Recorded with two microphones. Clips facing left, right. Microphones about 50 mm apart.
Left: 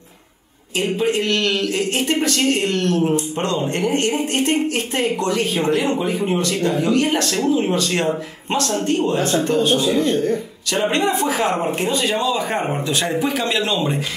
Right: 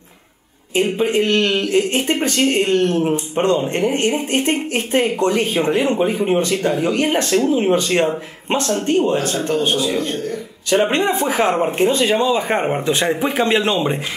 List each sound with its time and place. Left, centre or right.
0.7 s speech: right